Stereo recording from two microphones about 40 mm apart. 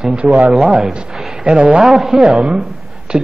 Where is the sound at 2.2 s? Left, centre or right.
Right.